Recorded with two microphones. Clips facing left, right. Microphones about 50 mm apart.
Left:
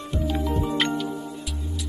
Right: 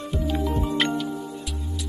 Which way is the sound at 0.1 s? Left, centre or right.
Centre.